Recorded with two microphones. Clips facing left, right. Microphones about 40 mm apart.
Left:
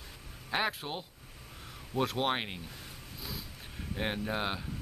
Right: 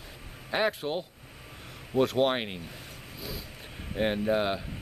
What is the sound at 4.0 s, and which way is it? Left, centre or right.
Speech, centre.